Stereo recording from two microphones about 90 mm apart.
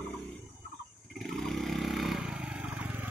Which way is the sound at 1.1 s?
5° left (ahead or behind).